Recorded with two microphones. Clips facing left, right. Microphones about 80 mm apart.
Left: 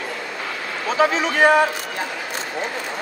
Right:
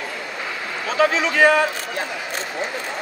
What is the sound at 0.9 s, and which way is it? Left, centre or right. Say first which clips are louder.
Speech: even; left.